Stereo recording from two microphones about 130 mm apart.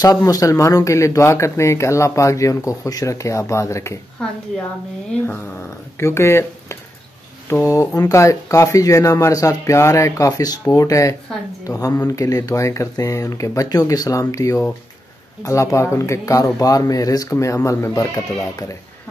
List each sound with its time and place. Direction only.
0.0 s speech: 25° left (ahead or behind)
5.9 s speech: 20° left (ahead or behind)